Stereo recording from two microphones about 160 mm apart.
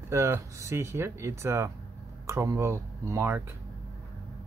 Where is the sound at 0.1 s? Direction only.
20° right (ahead or behind).